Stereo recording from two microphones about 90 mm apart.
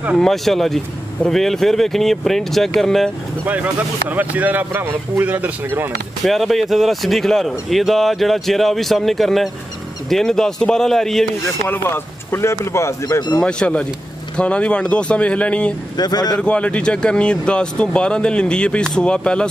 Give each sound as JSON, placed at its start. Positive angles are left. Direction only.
{"t": 0.2, "sound": "speech", "side_deg": 5}
{"t": 3.4, "sound": "a man's voice", "side_deg": -15}
{"t": 6.2, "sound": "speech", "side_deg": 0}
{"t": 11.4, "sound": "speech", "side_deg": 25}
{"t": 13.0, "sound": "speech", "side_deg": 50}
{"t": 13.4, "sound": "speech", "side_deg": 10}
{"t": 16.0, "sound": "speech", "side_deg": 50}
{"t": 16.3, "sound": "speech", "side_deg": 10}